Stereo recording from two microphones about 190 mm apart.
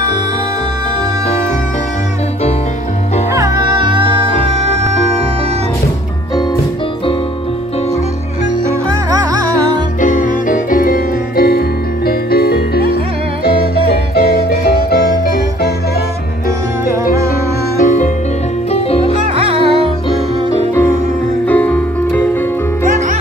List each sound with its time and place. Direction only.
3.3 s music: 20° right (ahead or behind)
10.0 s music: 45° left (ahead or behind)
17.8 s music: 40° left (ahead or behind)
18.7 s music: 30° left (ahead or behind)
19.2 s music: 30° right (ahead or behind)
21.5 s music: 10° left (ahead or behind)